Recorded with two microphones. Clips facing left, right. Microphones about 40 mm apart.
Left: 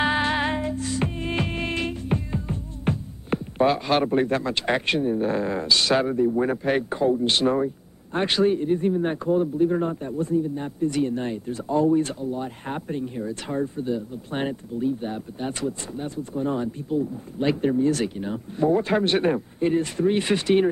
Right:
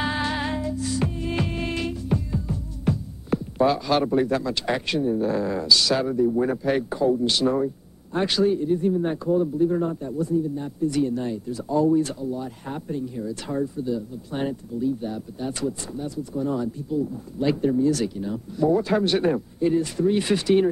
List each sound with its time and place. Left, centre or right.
0.0 s music: left
16.0 s speech: left